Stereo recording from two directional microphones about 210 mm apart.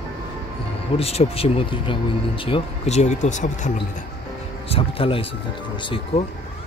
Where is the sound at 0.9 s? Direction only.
30° left (ahead or behind).